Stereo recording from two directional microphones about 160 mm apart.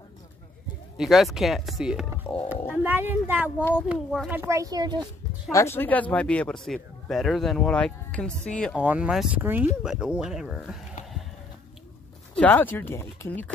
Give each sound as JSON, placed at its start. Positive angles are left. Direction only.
{"t": 0.9, "sound": "speech", "side_deg": 0}
{"t": 2.8, "sound": "speech", "side_deg": -10}
{"t": 4.4, "sound": "speech", "side_deg": -20}
{"t": 5.5, "sound": "speech", "side_deg": 15}
{"t": 8.7, "sound": "speech", "side_deg": -10}
{"t": 12.4, "sound": "speech", "side_deg": 10}